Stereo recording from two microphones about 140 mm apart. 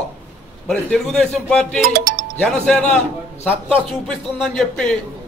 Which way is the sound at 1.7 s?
85° right.